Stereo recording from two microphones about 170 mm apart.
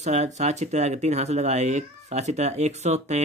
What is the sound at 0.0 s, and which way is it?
Speech, 40° right (ahead or behind).